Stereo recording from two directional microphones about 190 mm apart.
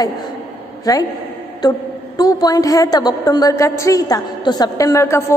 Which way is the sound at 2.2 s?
20° left (ahead or behind).